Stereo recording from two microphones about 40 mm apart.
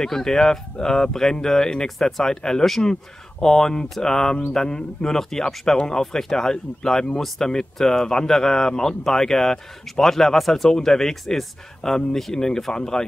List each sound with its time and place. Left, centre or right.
0.0 s speech: centre